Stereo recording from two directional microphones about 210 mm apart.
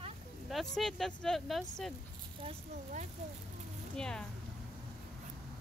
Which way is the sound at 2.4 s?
35° right (ahead or behind).